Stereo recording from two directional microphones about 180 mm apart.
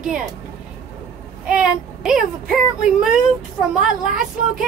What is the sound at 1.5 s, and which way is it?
Child singing, 5° right (ahead or behind).